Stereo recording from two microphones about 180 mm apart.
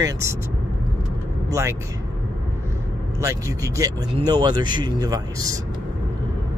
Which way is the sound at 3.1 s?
15° right (ahead or behind).